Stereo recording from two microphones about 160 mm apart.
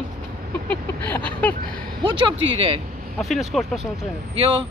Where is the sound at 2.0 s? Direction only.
30° right (ahead or behind).